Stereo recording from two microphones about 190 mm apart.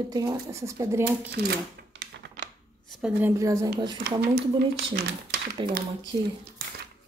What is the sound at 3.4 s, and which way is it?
Speech, 15° right (ahead or behind).